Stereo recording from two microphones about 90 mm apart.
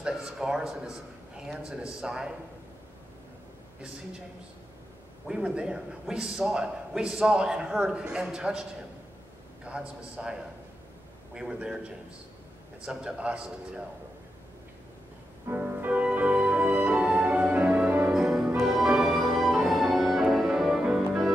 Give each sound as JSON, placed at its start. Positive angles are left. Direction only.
{"t": 0.0, "sound": "a man's voice", "side_deg": -5}
{"t": 5.3, "sound": "a man's voice", "side_deg": -10}
{"t": 9.7, "sound": "a man's voice", "side_deg": -10}
{"t": 12.8, "sound": "a man's voice", "side_deg": -10}
{"t": 15.5, "sound": "music", "side_deg": -15}
{"t": 18.1, "sound": "music", "side_deg": -5}